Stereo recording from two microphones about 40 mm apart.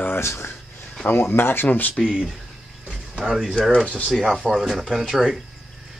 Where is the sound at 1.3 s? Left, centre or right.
Left.